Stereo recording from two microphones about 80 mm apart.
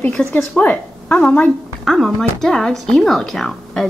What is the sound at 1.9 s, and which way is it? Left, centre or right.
Speech, centre.